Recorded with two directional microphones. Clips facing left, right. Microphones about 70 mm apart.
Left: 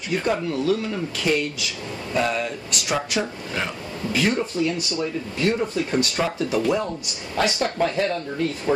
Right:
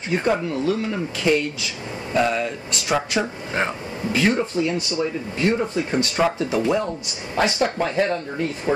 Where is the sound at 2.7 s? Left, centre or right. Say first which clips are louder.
Right 2 dB; right.